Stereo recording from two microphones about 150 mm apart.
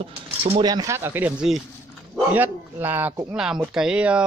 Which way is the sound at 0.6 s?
25° right (ahead or behind).